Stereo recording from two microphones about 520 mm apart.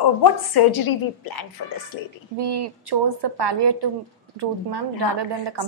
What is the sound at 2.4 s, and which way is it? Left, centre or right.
A woman's voice, right.